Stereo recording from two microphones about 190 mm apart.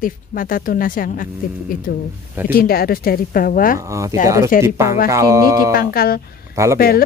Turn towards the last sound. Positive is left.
turn(degrees=50)  # may be behind; listen again after turning